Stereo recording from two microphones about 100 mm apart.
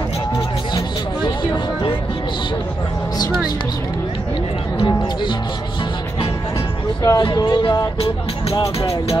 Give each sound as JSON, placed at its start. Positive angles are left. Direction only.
{"t": 4.7, "sound": "music", "side_deg": 50}
{"t": 7.0, "sound": "speech", "side_deg": 35}
{"t": 7.3, "sound": "speech", "side_deg": 50}